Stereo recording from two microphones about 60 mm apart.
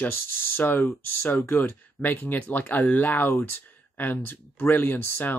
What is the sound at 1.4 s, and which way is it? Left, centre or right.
Speech, left.